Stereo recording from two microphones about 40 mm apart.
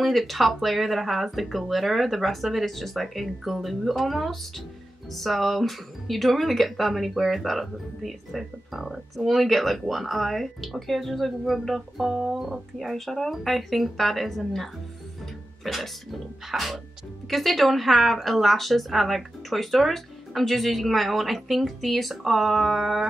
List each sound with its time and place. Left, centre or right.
0.0 s speech: centre